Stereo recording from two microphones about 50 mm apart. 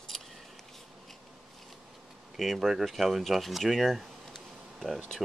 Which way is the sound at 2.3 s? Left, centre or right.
Centre.